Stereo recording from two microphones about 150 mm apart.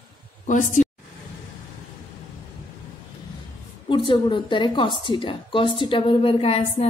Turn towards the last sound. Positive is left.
turn(degrees=40)  # may be behind; listen again after turning